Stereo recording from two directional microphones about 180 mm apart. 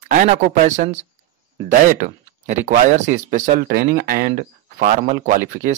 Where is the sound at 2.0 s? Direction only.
45° right (ahead or behind).